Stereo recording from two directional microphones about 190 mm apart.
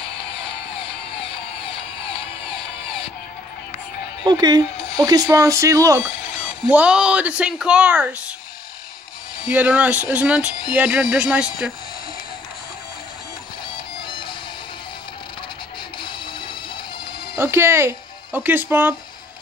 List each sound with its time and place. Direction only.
0.0 s music: 30° left (ahead or behind)
4.2 s speech: 20° right (ahead or behind)
6.7 s speech: 5° right (ahead or behind)
9.5 s speech: 5° right (ahead or behind)
14.0 s music: 25° left (ahead or behind)
16.0 s music: 25° left (ahead or behind)
17.4 s speech: 15° right (ahead or behind)